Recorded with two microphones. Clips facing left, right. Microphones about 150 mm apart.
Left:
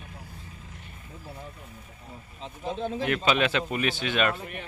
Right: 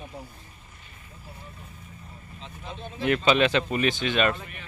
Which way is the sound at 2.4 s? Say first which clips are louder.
Left 8 dB; 40° left (ahead or behind).